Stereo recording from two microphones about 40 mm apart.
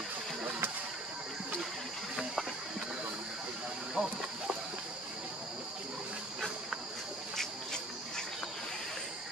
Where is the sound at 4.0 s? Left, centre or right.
Right.